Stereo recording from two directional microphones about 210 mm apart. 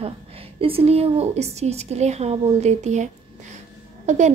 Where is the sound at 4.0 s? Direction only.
35° right (ahead or behind).